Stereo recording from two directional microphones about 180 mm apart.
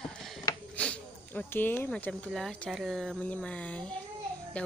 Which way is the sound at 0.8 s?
10° left (ahead or behind).